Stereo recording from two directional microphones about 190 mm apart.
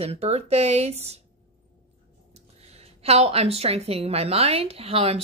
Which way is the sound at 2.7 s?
35° right (ahead or behind).